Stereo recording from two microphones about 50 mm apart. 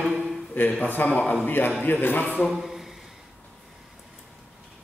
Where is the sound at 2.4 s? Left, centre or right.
Centre.